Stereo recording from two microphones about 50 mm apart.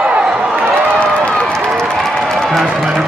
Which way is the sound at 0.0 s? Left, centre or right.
Right.